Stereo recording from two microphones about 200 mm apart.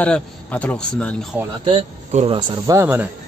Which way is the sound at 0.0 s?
5° left (ahead or behind).